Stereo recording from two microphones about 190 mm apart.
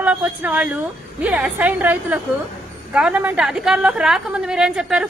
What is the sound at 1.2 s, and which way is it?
A woman's voice, 10° right (ahead or behind).